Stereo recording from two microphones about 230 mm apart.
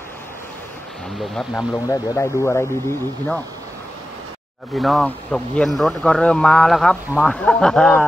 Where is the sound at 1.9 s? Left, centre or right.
Centre.